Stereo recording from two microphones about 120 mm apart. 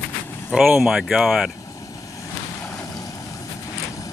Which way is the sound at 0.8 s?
5° right (ahead or behind).